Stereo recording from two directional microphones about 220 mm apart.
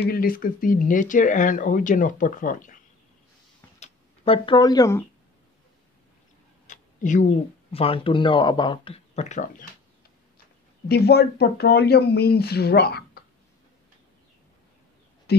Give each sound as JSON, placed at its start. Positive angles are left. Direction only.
{"t": 0.0, "sound": "speech", "side_deg": 40}
{"t": 3.8, "sound": "speech", "side_deg": 25}
{"t": 6.7, "sound": "a sound", "side_deg": 35}
{"t": 7.7, "sound": "speech", "side_deg": 25}
{"t": 10.9, "sound": "speech", "side_deg": 45}
{"t": 15.3, "sound": "speech", "side_deg": 45}